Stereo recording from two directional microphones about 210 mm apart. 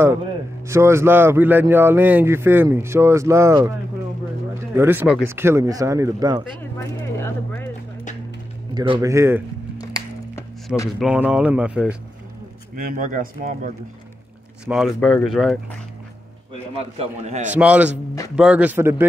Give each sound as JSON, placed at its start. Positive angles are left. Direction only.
{"t": 0.7, "sound": "speech", "side_deg": -15}
{"t": 4.7, "sound": "speech", "side_deg": -10}
{"t": 7.2, "sound": "speech", "side_deg": 10}
{"t": 8.7, "sound": "speech", "side_deg": -20}
{"t": 9.8, "sound": "a sound", "side_deg": 15}
{"t": 11.0, "sound": "speech", "side_deg": -5}
{"t": 12.7, "sound": "speech", "side_deg": -40}
{"t": 14.7, "sound": "speech", "side_deg": 0}
{"t": 16.7, "sound": "speech", "side_deg": -30}
{"t": 17.5, "sound": "speech", "side_deg": -5}